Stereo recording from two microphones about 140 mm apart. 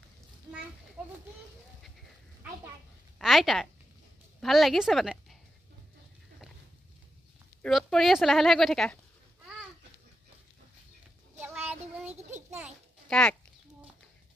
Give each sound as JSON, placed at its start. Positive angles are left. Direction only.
{"t": 1.0, "sound": "a child's voice", "side_deg": -5}
{"t": 3.2, "sound": "a woman's voice", "side_deg": 0}
{"t": 7.6, "sound": "speech", "side_deg": 0}
{"t": 11.3, "sound": "child singing", "side_deg": -15}
{"t": 12.2, "sound": "a sound", "side_deg": -55}
{"t": 12.4, "sound": "a child's voice", "side_deg": -15}
{"t": 13.1, "sound": "speech", "side_deg": 5}